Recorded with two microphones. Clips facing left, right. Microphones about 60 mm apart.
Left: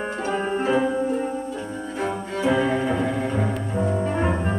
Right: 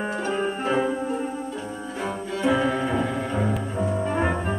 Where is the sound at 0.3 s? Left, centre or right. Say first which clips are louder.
Left 4 dB; centre.